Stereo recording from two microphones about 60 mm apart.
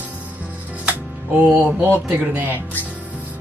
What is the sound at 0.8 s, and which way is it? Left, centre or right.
Speech, centre.